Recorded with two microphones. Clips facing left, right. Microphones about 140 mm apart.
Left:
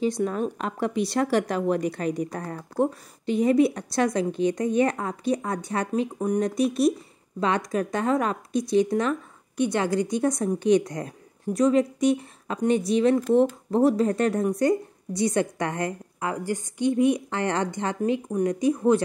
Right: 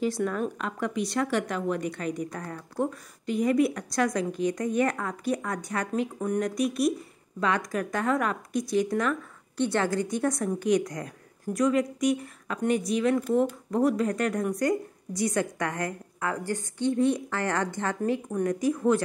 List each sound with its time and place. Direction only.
0.0 s a woman's voice: 20° left (ahead or behind)